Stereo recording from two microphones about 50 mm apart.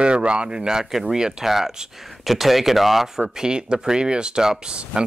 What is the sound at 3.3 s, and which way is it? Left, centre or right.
Speech, centre.